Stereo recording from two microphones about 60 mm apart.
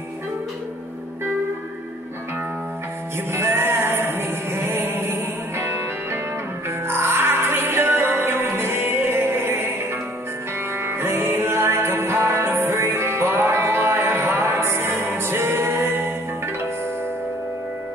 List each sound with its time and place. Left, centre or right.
3.3 s music: right
6.9 s music: right
10.8 s music: right